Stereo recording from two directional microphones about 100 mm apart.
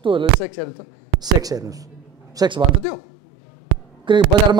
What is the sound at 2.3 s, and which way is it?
Speech, 50° right (ahead or behind).